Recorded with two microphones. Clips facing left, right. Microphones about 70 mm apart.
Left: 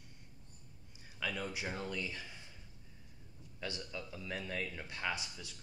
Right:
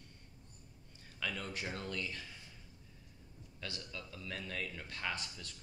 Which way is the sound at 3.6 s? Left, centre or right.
Left.